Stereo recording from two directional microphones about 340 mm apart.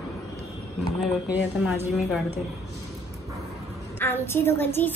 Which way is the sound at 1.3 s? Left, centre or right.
Centre.